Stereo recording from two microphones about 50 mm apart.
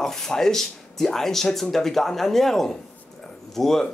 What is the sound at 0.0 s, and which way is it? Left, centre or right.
Speech, centre.